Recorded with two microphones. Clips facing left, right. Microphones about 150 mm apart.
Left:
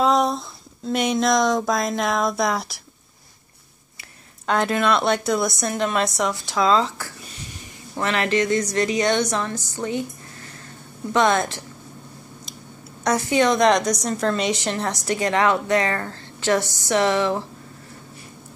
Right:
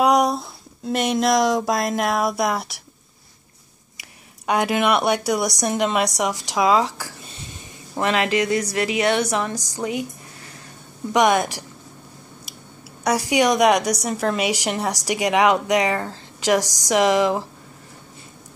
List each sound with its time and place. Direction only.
0.0 s speech: 15° right (ahead or behind)
4.5 s a woman's voice: 15° right (ahead or behind)
7.4 s a sound: 15° right (ahead or behind)
8.7 s a woman's voice: 5° right (ahead or behind)
11.1 s a woman's voice: 15° right (ahead or behind)
13.0 s a woman's voice: 10° right (ahead or behind)